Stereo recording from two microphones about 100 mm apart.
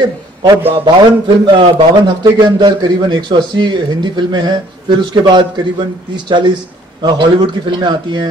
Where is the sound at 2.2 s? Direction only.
45° right (ahead or behind).